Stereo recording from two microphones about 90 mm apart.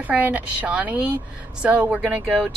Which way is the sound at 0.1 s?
15° right (ahead or behind).